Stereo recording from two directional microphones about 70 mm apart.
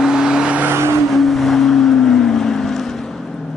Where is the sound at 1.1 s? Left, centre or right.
Centre.